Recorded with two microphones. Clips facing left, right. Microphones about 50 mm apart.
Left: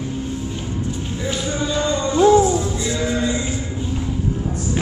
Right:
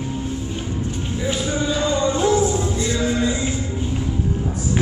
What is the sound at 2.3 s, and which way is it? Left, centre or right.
Music, left.